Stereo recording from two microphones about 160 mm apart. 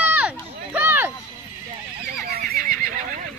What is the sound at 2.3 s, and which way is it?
Neigh, 65° right (ahead or behind).